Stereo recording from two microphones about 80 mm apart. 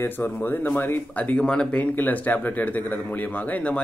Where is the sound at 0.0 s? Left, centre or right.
Left.